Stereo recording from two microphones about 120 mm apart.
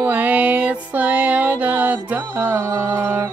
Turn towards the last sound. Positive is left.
turn(degrees=-20)  # may be behind; listen again after turning